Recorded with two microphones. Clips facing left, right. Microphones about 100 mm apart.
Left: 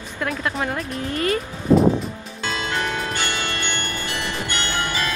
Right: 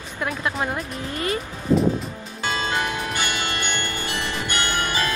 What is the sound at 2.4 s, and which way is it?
Music, 15° right (ahead or behind).